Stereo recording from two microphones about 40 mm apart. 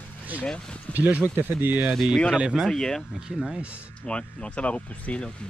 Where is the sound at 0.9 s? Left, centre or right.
Right.